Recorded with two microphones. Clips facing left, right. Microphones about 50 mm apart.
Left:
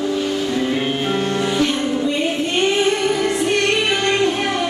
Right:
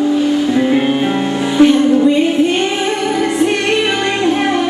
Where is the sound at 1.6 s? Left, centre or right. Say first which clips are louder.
Right 10 dB; centre.